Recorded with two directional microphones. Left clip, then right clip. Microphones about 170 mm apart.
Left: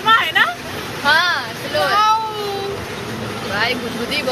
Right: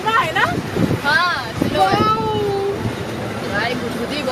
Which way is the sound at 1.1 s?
35° left (ahead or behind).